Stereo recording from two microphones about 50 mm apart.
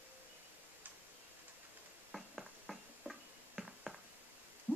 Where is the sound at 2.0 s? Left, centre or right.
Centre.